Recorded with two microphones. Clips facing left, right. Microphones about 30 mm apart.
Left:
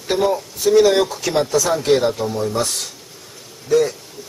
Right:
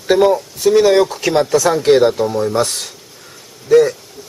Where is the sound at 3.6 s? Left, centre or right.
Right.